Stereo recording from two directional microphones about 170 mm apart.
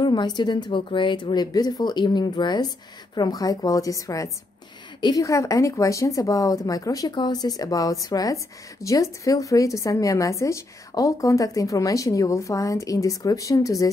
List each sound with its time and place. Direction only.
0.0 s a woman's voice: 25° left (ahead or behind)